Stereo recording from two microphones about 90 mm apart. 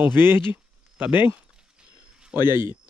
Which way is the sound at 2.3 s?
50° left (ahead or behind).